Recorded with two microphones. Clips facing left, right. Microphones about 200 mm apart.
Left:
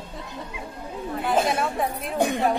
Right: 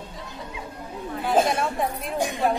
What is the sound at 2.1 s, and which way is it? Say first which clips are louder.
Speech: left 6 dB; 60° left (ahead or behind).